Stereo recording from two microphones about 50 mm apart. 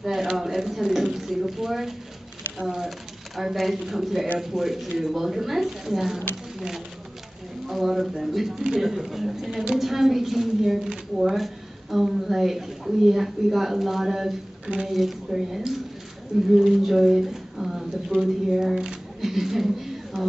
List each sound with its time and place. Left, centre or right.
0.0 s a sound: centre
1.1 s a woman's voice: centre
7.6 s a woman's voice: centre